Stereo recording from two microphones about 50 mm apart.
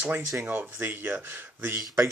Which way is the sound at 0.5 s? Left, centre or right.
Right.